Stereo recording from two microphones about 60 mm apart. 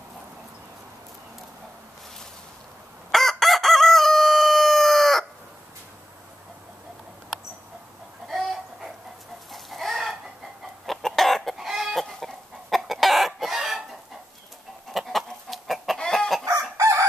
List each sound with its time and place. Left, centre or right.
3.1 s crowing: centre
8.3 s chicken: centre
14.9 s chicken: centre
16.4 s chicken: right